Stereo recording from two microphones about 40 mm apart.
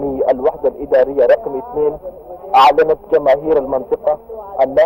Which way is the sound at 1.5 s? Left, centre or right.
Left.